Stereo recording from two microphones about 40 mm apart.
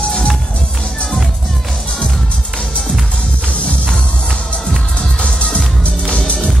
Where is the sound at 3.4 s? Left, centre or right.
Left.